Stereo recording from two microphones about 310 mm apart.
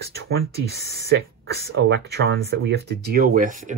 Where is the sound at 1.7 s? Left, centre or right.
Right.